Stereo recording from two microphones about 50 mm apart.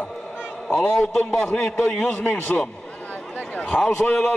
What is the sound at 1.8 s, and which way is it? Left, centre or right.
Speech, left.